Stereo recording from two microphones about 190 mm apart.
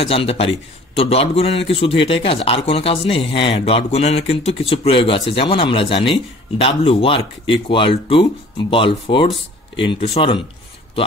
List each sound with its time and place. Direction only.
0.0 s a man's voice: 30° left (ahead or behind)